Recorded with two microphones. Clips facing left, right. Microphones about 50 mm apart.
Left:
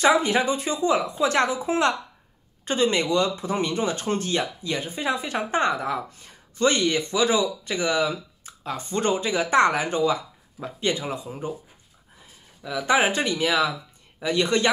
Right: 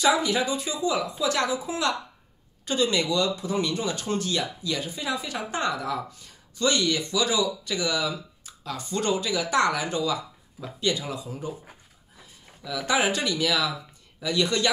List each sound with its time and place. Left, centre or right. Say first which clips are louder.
0.0 s speech: left 3 dB; left
12.6 s speech: left 3 dB; left